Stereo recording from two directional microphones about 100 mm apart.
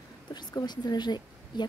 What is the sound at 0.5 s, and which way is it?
Speech, 45° left (ahead or behind).